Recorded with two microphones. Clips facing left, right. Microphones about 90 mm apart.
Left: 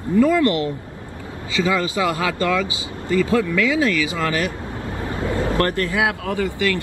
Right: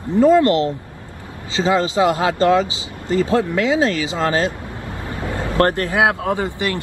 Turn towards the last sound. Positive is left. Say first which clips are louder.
# right 1 dB
turn(degrees=-20)  # may be behind; listen again after turning